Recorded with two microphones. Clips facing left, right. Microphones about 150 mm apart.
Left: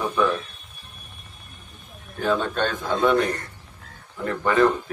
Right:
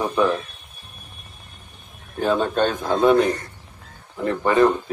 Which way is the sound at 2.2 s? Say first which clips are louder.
Right 3 dB; 25° right (ahead or behind).